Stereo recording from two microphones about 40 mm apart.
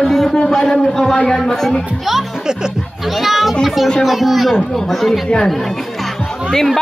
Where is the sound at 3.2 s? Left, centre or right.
Centre.